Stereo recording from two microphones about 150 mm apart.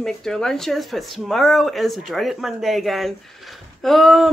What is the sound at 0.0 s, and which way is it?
Speech, 5° left (ahead or behind).